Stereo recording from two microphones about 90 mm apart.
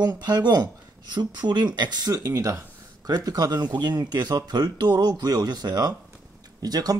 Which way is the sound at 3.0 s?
45° right (ahead or behind).